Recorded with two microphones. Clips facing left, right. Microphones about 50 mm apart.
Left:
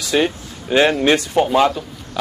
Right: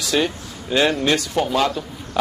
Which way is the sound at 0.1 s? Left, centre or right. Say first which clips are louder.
Left 3 dB; left.